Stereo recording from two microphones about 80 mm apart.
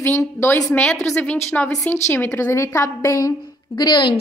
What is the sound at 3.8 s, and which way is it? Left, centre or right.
Speech, left.